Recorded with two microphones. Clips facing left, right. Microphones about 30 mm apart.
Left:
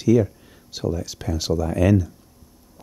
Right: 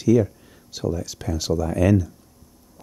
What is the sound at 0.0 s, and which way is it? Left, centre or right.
Speech, left.